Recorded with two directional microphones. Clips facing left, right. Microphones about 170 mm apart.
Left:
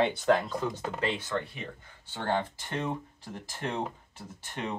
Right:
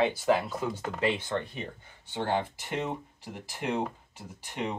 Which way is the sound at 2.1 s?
15° right (ahead or behind).